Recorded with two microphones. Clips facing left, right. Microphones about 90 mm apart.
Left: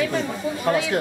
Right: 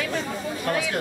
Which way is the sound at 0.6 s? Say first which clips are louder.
Left 4 dB; 15° left (ahead or behind).